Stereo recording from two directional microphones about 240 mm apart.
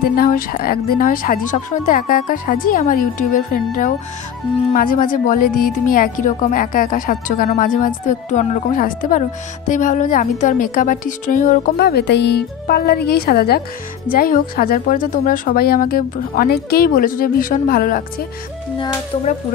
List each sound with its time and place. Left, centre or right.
0.1 s speech: left
19.1 s speech: left